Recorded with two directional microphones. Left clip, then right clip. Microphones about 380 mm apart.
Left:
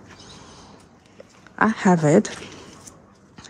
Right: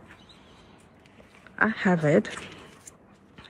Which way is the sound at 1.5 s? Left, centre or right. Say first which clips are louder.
Left 5 dB; centre.